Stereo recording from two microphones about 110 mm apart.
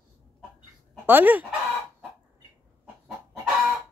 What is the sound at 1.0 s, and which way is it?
Speech, 15° right (ahead or behind).